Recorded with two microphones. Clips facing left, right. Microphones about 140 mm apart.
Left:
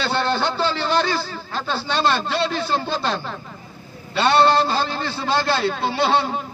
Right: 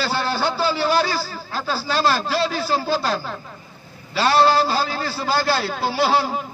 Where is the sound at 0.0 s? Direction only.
5° right (ahead or behind).